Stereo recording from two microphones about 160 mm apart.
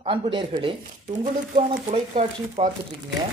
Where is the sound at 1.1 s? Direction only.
50° right (ahead or behind); by 2.7 s 35° right (ahead or behind).